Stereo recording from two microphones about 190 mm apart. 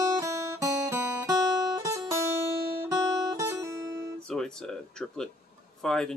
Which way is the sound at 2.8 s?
15° right (ahead or behind).